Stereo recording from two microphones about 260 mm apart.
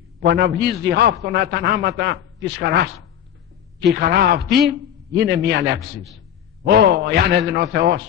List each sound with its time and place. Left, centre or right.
0.2 s a man's voice: right
3.9 s a man's voice: right